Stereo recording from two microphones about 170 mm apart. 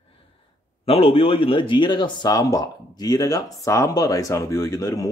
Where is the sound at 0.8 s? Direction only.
35° left (ahead or behind).